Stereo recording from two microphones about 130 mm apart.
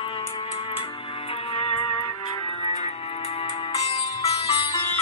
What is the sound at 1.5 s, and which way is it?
Music, 45° left (ahead or behind).